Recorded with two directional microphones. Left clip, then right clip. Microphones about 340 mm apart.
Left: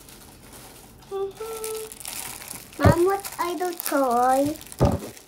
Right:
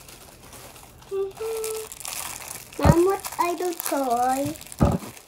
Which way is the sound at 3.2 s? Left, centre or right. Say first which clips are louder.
Right 2 dB; centre.